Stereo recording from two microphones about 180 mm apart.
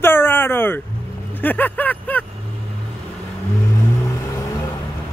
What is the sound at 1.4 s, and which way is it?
Vehicle, 10° left (ahead or behind).